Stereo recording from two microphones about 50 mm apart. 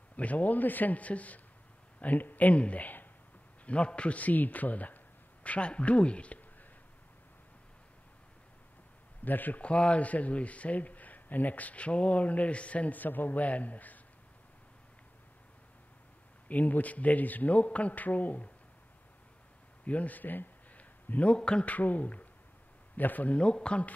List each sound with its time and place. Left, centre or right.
0.1 s a man's voice: left
3.6 s a man's voice: left
9.2 s a man's voice: left
9.6 s speech: left
16.4 s a man's voice: left
19.8 s speech: left
21.6 s a man's voice: left
23.4 s speech: centre